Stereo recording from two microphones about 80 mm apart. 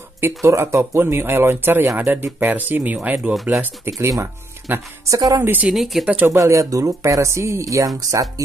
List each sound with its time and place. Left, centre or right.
0.4 s speech: right
5.1 s speech: right
5.4 s speech: right
5.7 s speech: centre
6.2 s speech: right